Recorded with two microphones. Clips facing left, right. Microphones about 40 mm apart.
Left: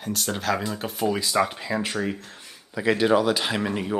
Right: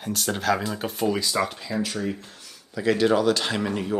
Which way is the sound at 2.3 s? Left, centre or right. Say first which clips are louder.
Left 2 dB; left.